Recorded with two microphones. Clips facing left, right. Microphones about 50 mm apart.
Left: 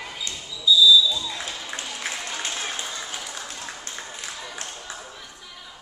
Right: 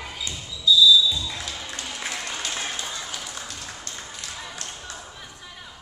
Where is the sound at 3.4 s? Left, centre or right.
Left.